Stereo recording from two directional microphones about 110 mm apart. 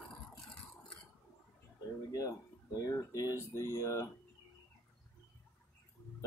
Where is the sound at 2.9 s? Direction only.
30° left (ahead or behind).